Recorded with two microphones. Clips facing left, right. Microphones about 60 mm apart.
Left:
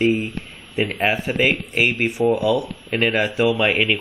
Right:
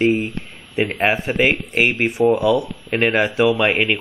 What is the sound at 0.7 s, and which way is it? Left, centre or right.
Speech, right.